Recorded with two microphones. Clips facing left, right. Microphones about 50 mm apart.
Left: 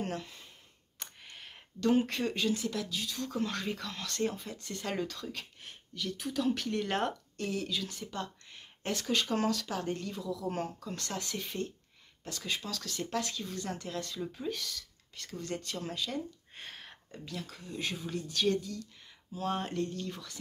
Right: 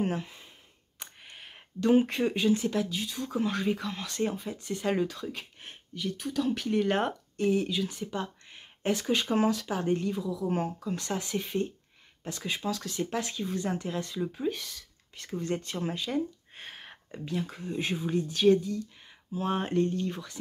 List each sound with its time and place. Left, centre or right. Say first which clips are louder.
0.0 s a sound: right 6 dB; centre
0.9 s speech: right 1 dB; centre
3.2 s speech: right 5 dB; centre
6.1 s speech: right 1 dB; centre
7.4 s speech: right 8 dB; right
16.5 s speech: right 2 dB; centre